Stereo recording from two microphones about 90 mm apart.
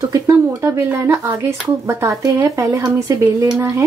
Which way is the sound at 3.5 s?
25° right (ahead or behind).